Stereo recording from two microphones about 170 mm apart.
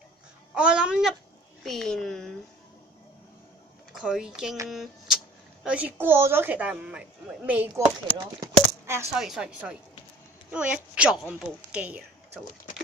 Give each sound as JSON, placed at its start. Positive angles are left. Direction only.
{"t": 0.6, "sound": "speech", "side_deg": -5}
{"t": 3.9, "sound": "speech", "side_deg": -5}
{"t": 8.2, "sound": "coin", "side_deg": -20}
{"t": 9.1, "sound": "speech", "side_deg": -5}
{"t": 11.7, "sound": "a sound", "side_deg": -5}